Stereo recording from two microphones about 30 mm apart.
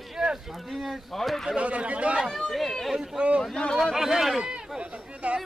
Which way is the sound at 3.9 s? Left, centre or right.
Centre.